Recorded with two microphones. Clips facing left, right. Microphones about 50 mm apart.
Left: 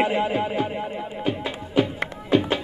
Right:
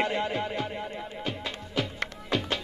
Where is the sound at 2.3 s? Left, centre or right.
Centre.